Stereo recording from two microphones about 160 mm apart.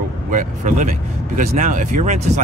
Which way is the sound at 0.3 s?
55° right (ahead or behind).